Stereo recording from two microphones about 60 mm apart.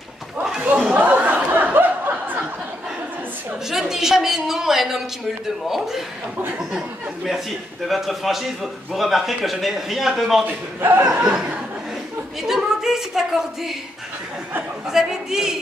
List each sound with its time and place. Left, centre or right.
0.4 s a sound: centre
0.9 s a sound: right
3.7 s a woman's voice: centre
7.9 s a man's voice: centre
10.8 s speech: right
12.4 s a woman's voice: centre
14.9 s a man's voice: centre